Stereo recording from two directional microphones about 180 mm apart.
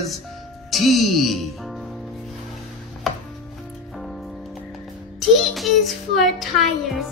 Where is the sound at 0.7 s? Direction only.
Centre (ahead or behind).